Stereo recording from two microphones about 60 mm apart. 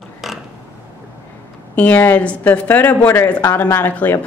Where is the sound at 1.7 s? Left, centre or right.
Left.